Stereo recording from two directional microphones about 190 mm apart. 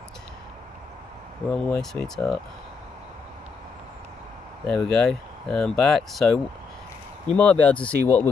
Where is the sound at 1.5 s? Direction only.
5° left (ahead or behind).